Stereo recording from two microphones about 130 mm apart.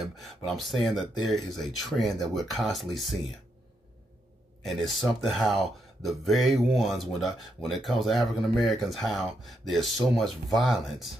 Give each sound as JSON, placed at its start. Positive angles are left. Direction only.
{"t": 0.0, "sound": "speech", "side_deg": 0}
{"t": 4.6, "sound": "speech", "side_deg": 0}